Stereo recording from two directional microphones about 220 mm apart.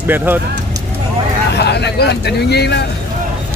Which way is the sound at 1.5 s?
50° left (ahead or behind).